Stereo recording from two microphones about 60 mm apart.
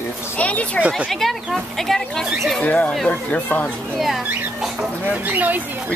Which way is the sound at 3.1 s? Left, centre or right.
Left.